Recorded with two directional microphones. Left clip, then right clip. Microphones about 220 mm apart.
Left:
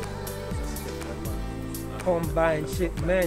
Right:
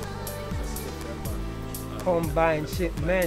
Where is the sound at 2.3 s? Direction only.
15° right (ahead or behind).